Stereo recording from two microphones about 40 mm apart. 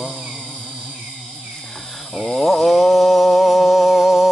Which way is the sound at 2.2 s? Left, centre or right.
Centre.